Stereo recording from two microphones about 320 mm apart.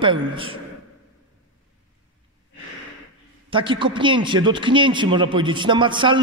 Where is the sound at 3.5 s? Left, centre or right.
Centre.